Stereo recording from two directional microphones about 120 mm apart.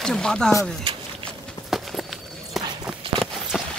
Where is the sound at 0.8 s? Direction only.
45° right (ahead or behind).